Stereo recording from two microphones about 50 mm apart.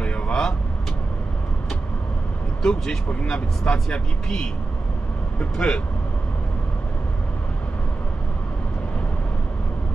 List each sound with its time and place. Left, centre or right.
0.0 s vehicle: left
2.6 s speech: centre